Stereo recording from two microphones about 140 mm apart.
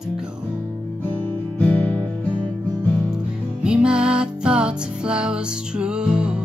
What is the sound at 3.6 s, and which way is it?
Music, 5° right (ahead or behind).